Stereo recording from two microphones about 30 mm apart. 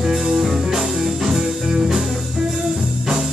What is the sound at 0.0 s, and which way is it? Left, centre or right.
Music, centre.